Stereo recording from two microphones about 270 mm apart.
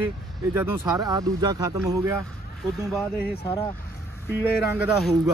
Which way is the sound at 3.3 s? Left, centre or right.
Centre.